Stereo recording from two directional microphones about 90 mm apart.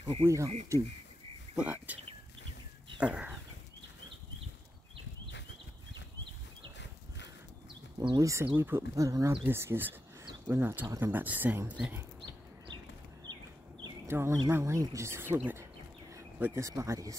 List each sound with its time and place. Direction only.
0.0 s speech: 80° right
0.7 s speech: 35° right (ahead or behind)
1.6 s speech: 15° right (ahead or behind)
3.0 s speech: 10° right (ahead or behind)
8.2 s speech: 35° right (ahead or behind)
8.5 s speech: 25° right (ahead or behind)
8.9 s speech: 35° right (ahead or behind)
9.4 s speech: 25° right (ahead or behind)
14.0 s speech: 30° right (ahead or behind)
16.1 s a sound: 35° right (ahead or behind)
16.5 s speech: 35° right (ahead or behind)